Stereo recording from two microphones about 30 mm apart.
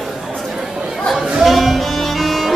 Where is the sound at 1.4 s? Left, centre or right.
Centre.